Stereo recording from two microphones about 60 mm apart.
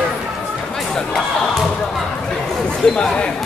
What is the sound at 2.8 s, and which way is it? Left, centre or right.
Speech, centre.